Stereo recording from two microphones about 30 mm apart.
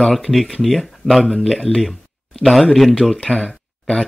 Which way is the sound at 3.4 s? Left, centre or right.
Centre.